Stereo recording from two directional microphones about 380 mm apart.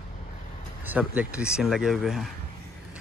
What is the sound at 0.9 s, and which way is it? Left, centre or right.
Speech, centre.